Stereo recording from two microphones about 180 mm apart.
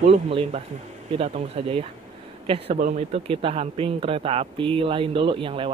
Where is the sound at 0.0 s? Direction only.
35° right (ahead or behind).